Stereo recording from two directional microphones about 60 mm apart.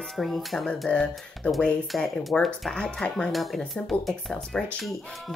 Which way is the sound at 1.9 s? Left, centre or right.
Centre.